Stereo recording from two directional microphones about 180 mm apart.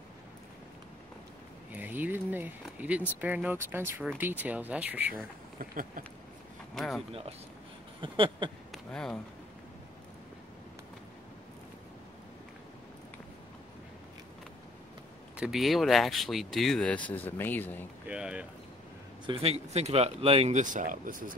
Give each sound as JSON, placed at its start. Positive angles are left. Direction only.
{"t": 1.7, "sound": "speech", "side_deg": -10}
{"t": 5.6, "sound": "a sound", "side_deg": -50}
{"t": 6.7, "sound": "speech", "side_deg": 0}
{"t": 8.0, "sound": "a sound", "side_deg": -25}
{"t": 8.7, "sound": "speech", "side_deg": 5}
{"t": 15.3, "sound": "speech", "side_deg": -5}
{"t": 18.0, "sound": "speech", "side_deg": -5}
{"t": 19.2, "sound": "speech", "side_deg": -30}